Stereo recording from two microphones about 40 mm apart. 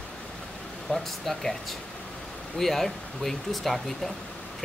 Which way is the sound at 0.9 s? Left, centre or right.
Centre.